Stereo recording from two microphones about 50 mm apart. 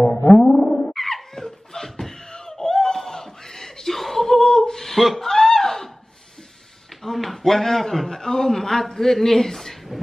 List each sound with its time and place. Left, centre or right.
0.4 s a sound: centre
0.9 s laughter: centre
7.0 s a man's voice: centre